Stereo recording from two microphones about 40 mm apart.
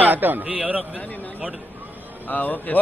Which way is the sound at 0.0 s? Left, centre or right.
Right.